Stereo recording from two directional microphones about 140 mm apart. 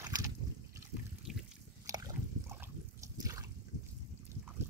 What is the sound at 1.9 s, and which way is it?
Rowboat, 20° right (ahead or behind).